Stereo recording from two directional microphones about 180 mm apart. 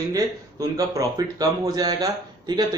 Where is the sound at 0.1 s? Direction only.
20° right (ahead or behind).